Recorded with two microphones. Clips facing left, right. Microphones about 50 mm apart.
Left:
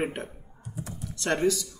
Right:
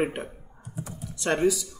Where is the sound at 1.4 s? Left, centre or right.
Centre.